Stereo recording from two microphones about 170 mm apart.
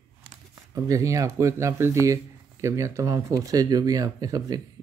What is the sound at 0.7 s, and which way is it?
Speech, 20° right (ahead or behind).